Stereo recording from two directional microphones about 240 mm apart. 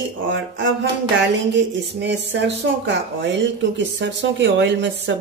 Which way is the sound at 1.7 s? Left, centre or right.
Right.